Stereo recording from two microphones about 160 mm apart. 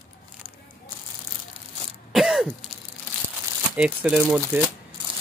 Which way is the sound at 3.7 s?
10° right (ahead or behind).